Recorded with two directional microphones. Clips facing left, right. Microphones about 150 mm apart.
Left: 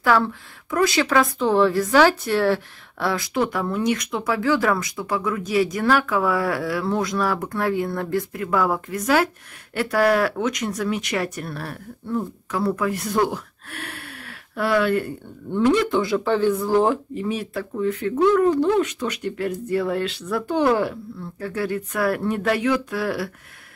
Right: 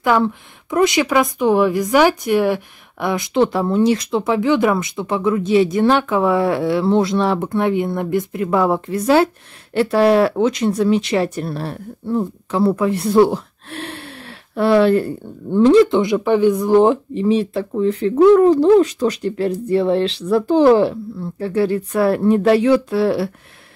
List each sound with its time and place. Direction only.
0.0 s speech: 20° right (ahead or behind)